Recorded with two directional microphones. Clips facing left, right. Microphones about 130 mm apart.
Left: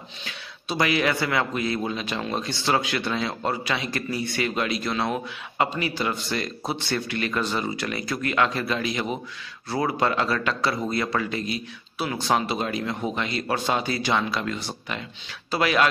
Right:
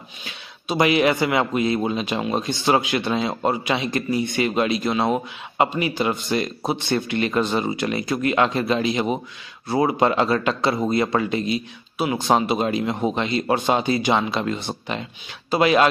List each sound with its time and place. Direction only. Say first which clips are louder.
0.2 s a man's voice: right 1 dB; 20° right (ahead or behind)